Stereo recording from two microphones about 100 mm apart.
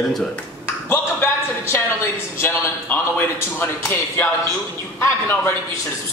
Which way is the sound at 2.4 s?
20° left (ahead or behind).